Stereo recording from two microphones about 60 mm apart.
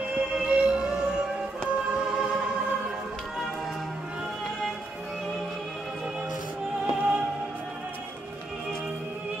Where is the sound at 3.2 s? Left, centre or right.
Centre.